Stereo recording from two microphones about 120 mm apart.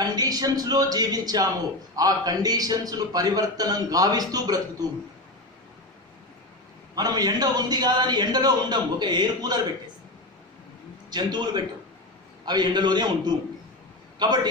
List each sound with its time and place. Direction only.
0.0 s a man's voice: 35° right (ahead or behind)
7.0 s a man's voice: 35° right (ahead or behind)
11.1 s a man's voice: 35° right (ahead or behind)